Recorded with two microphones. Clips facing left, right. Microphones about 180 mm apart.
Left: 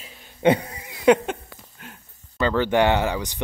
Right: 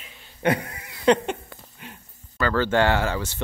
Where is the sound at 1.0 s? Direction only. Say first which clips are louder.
Left 2 dB; 5° left (ahead or behind).